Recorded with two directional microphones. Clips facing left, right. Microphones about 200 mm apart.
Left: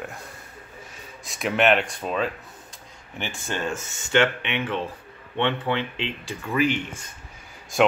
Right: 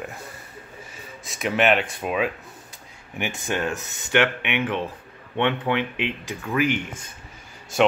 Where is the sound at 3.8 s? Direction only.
60° right (ahead or behind).